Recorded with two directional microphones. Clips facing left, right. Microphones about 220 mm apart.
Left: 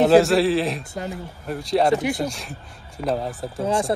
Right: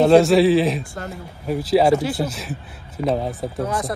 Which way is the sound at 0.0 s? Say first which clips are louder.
Right 2 dB; centre (ahead or behind).